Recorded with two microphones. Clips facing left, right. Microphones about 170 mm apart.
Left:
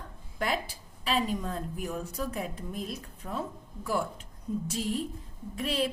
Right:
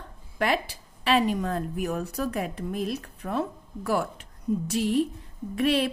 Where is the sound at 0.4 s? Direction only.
75° right (ahead or behind).